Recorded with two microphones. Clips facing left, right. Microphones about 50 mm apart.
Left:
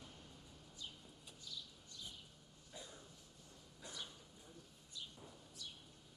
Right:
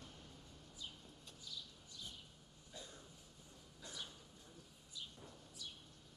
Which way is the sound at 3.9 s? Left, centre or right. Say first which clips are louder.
Even; centre.